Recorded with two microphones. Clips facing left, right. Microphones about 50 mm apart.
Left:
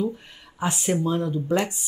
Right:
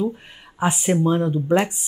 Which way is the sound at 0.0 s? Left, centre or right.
Centre.